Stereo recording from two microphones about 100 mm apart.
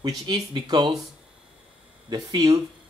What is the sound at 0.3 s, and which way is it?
Speech, 45° right (ahead or behind).